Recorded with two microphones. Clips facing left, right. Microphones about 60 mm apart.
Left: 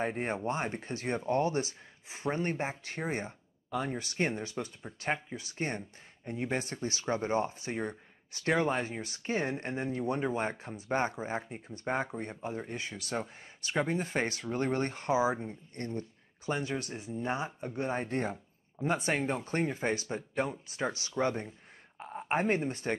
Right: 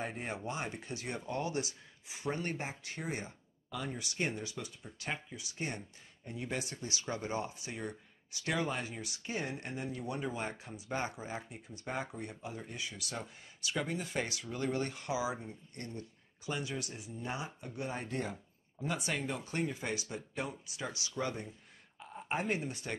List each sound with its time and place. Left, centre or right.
0.0 s speech: left